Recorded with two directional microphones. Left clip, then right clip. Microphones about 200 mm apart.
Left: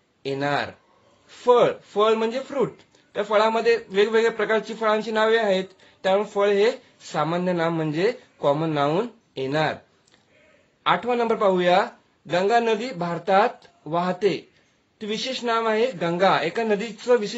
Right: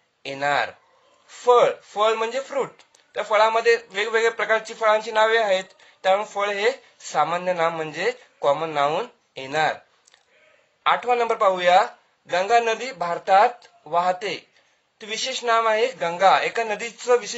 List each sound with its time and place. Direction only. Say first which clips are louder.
0.2 s speech: right 2 dB; 40° right (ahead or behind)
10.8 s speech: right 2 dB; 40° right (ahead or behind)